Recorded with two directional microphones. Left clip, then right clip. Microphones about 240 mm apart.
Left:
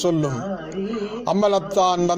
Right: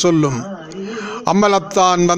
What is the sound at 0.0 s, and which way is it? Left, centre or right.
A man's voice, right.